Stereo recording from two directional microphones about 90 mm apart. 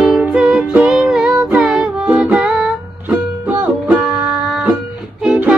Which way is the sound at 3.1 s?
15° right (ahead or behind).